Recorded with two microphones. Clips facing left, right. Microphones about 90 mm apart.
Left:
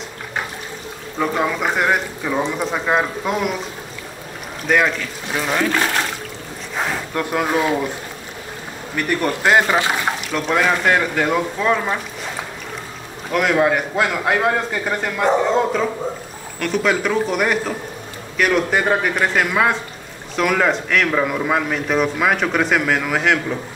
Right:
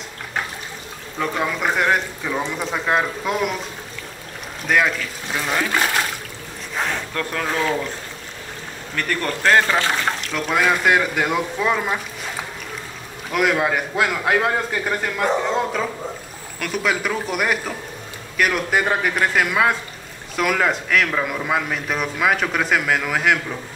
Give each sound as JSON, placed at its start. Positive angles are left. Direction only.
{"t": 1.2, "sound": "a man's voice", "side_deg": 5}
{"t": 4.6, "sound": "a man's voice", "side_deg": 0}
{"t": 7.2, "sound": "speech", "side_deg": 15}
{"t": 8.9, "sound": "speech", "side_deg": 15}
{"t": 10.4, "sound": "a man's voice", "side_deg": 0}
{"t": 13.3, "sound": "a man's voice", "side_deg": -5}
{"t": 16.5, "sound": "a man's voice", "side_deg": 0}